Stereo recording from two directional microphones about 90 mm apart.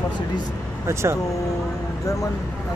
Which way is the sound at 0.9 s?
30° right (ahead or behind).